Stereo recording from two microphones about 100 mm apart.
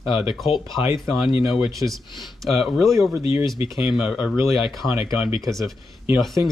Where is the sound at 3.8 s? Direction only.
5° right (ahead or behind).